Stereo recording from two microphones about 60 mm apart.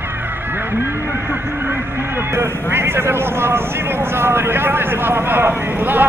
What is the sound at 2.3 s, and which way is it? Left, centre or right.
Speech, right.